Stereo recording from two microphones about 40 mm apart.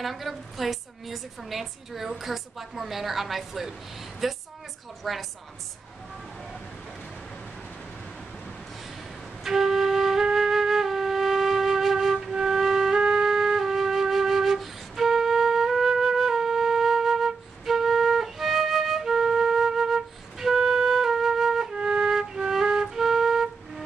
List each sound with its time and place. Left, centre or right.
0.0 s a woman's voice: centre
9.4 s flute: centre
21.7 s music: centre